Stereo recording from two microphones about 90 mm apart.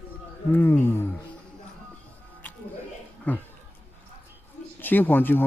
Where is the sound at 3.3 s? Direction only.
15° left (ahead or behind).